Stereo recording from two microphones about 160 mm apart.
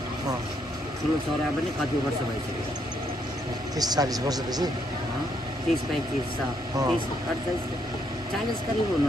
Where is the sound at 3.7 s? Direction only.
25° right (ahead or behind).